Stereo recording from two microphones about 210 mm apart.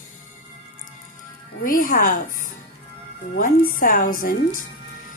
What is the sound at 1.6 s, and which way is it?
Speech, 40° left (ahead or behind).